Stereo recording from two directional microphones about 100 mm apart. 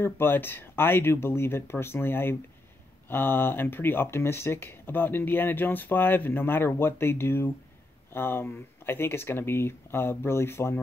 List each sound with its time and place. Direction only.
0.0 s speech: 20° left (ahead or behind)